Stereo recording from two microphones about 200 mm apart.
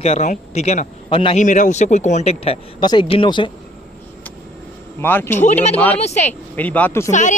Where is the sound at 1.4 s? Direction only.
40° left (ahead or behind).